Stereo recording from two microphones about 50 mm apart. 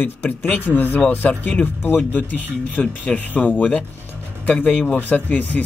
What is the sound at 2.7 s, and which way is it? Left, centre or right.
Speech, left.